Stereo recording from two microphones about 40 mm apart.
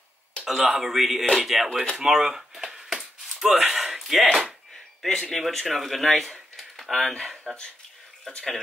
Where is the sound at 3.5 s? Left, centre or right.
Centre.